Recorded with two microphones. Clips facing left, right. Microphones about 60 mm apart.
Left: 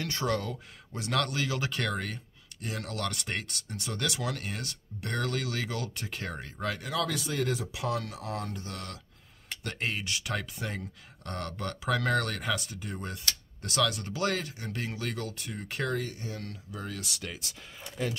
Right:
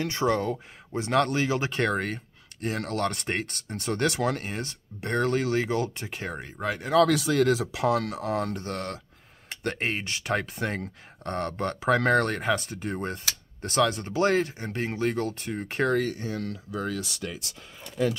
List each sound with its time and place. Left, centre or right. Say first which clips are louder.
0.0 s speech: right 6 dB; right
7.0 s speech: right 12 dB; right
10.4 s speech: right 6 dB; right
11.2 s speech: right 7 dB; right
15.9 s speech: right 8 dB; right